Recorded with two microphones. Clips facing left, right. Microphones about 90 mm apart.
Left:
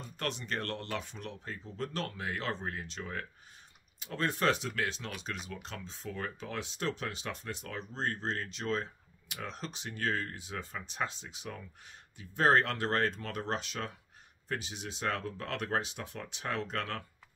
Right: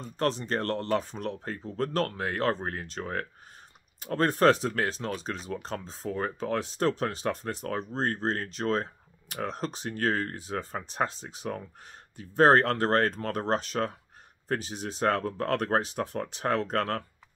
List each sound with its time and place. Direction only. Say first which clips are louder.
0.0 s speech: right 9 dB; 35° right (ahead or behind)